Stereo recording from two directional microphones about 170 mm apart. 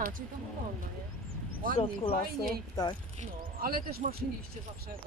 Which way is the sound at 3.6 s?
60° right (ahead or behind).